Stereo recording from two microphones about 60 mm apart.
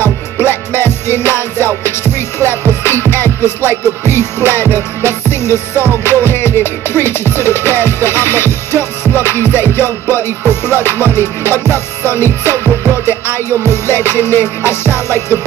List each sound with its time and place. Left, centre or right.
0.0 s music: left